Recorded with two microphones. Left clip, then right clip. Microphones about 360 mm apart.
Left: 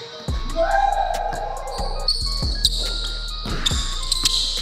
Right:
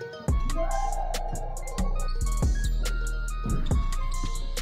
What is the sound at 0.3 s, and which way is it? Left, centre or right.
Music, centre.